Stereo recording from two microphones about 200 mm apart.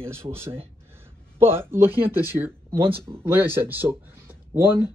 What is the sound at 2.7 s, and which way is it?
Speech, 25° right (ahead or behind).